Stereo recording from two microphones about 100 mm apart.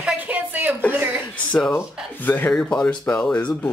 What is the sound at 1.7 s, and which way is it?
Speech, 20° left (ahead or behind).